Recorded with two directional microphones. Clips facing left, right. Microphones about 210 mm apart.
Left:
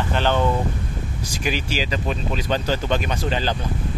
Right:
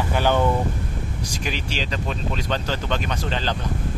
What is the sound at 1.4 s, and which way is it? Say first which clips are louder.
Speech: left 5 dB; 5° left (ahead or behind).